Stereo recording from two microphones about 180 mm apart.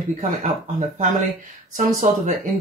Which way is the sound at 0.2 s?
40° right (ahead or behind).